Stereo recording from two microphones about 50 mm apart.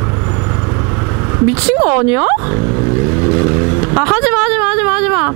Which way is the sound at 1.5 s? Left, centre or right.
Right.